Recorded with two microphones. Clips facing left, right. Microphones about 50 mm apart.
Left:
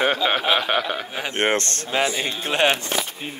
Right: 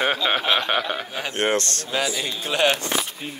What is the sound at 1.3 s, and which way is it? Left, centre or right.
Speech, left.